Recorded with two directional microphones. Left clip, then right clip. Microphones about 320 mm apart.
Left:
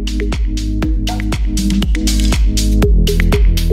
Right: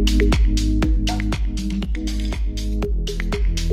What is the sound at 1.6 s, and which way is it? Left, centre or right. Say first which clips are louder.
Music: left 9 dB; left.